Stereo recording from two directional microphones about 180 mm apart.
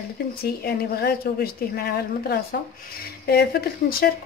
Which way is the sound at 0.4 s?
60° left (ahead or behind).